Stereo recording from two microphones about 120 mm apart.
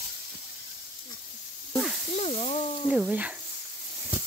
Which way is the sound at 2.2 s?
60° left (ahead or behind).